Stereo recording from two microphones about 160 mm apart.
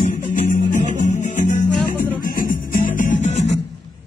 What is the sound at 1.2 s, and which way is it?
Music, 50° left (ahead or behind).